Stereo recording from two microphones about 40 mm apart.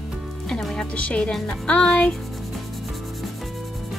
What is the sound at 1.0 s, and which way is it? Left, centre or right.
Speech, left.